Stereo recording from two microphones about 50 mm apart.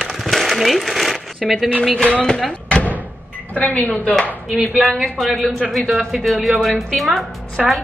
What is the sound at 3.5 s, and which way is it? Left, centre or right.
Speech, left.